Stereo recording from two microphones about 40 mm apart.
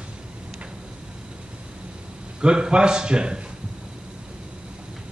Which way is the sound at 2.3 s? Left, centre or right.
Right.